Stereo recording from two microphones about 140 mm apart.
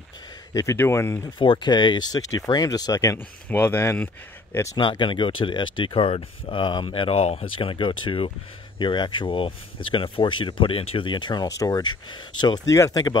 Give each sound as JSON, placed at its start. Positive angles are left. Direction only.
{"t": 0.5, "sound": "speech", "side_deg": 20}
{"t": 1.2, "sound": "speech", "side_deg": 35}
{"t": 3.4, "sound": "speech", "side_deg": 15}
{"t": 4.7, "sound": "speech", "side_deg": 35}